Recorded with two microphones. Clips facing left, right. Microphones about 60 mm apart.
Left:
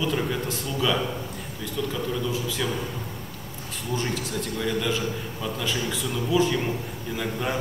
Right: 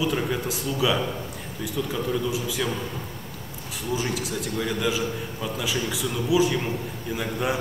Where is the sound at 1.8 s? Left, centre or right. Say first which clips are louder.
Even; right.